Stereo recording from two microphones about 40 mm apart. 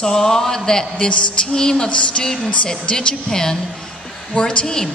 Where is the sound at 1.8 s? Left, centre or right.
Left.